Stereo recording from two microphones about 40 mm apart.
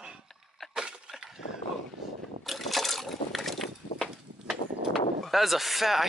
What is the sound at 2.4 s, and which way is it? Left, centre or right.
Boat, centre.